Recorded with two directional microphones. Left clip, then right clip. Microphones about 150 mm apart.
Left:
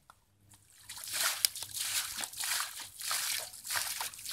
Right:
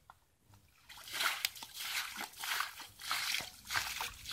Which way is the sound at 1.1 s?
40° left (ahead or behind).